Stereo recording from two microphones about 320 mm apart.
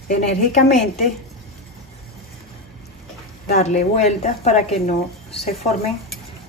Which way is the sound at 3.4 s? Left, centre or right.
Left.